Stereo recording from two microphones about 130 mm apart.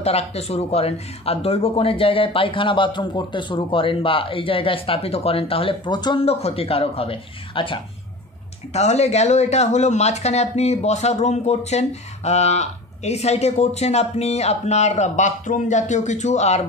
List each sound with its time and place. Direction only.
0.0 s speech: 55° left (ahead or behind); by 6.2 s 35° left (ahead or behind)
6.2 s speech: 50° left (ahead or behind)
8.7 s speech: 55° left (ahead or behind)